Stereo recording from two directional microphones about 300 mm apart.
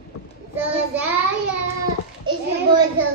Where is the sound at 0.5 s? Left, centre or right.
Centre.